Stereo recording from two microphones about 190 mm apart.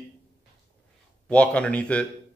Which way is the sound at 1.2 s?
5° left (ahead or behind).